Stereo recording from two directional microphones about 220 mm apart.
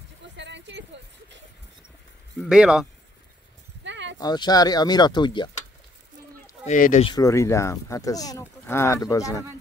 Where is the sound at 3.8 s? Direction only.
55° right (ahead or behind).